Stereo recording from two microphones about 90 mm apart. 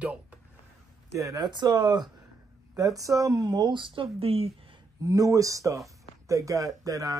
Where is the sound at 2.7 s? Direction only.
40° right (ahead or behind); by 4.7 s 90° right.